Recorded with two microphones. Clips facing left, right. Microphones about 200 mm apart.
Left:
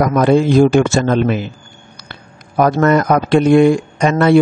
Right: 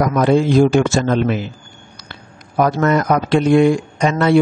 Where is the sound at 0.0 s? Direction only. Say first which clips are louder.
Left 2 dB; 55° left (ahead or behind).